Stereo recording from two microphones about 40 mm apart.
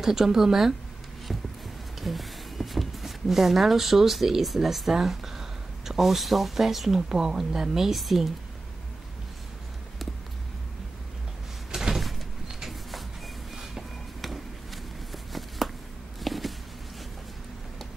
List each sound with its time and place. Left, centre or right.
0.0 s a woman's voice: centre
2.0 s speech: centre
7.9 s speech: centre
11.7 s cupboard open or close: centre
12.4 s a sound: centre
16.2 s a sound: centre